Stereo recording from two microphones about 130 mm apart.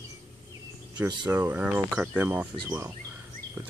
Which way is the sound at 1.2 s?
15° right (ahead or behind).